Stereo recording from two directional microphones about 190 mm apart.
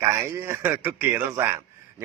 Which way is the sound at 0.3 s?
10° right (ahead or behind).